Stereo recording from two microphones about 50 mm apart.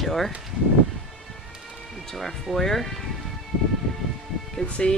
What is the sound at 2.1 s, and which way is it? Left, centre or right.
Speech, centre.